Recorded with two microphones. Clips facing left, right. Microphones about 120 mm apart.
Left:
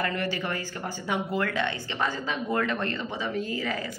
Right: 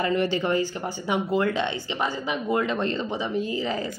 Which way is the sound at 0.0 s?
20° right (ahead or behind).